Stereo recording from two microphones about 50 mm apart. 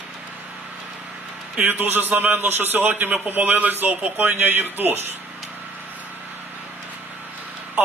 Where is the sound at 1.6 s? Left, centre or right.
Right.